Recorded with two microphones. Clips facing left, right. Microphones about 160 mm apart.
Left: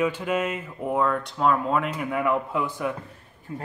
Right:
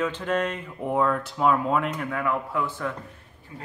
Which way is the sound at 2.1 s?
20° left (ahead or behind).